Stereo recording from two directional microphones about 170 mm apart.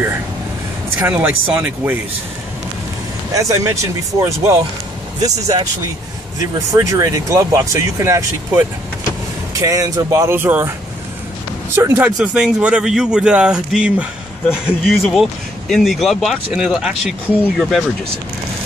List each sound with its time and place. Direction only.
0.9 s speech: 10° right (ahead or behind)
3.3 s speech: 20° right (ahead or behind)
6.7 s speech: 20° right (ahead or behind)
11.7 s speech: 10° right (ahead or behind)